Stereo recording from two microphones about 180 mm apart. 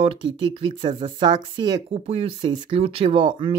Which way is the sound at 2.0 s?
35° right (ahead or behind).